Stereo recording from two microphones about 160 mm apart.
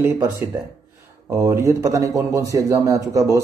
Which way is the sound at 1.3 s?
15° right (ahead or behind).